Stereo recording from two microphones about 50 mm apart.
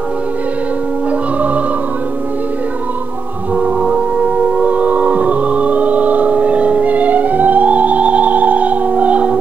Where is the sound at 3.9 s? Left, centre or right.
Right.